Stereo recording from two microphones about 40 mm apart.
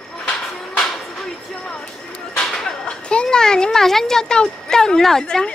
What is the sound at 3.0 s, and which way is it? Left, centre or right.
A child's voice, left.